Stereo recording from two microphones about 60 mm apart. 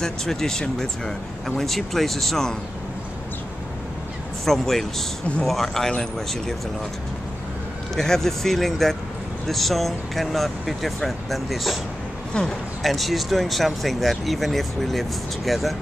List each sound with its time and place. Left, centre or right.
0.0 s speech: centre
4.5 s speech: centre
7.9 s speech: centre
12.3 s speech: centre
12.8 s speech: centre